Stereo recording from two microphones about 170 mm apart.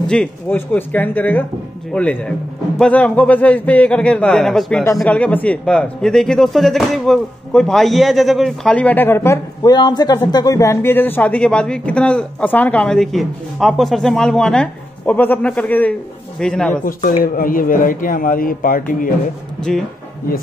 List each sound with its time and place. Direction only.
0.1 s a man's voice: 5° left (ahead or behind)
16.8 s speech: 55° left (ahead or behind)